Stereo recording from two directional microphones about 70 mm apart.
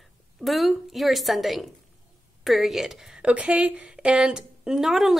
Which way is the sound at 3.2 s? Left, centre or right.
Centre.